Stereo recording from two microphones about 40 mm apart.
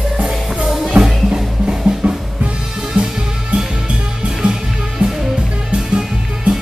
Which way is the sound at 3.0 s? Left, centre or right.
Right.